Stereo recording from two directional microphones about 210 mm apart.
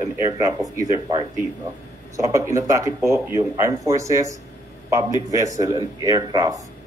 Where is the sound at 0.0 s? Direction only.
15° right (ahead or behind).